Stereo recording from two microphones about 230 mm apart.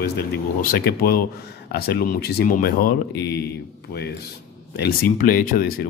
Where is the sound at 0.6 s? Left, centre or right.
Left.